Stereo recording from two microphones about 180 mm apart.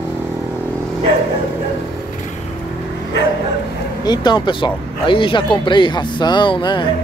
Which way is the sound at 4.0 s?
25° left (ahead or behind).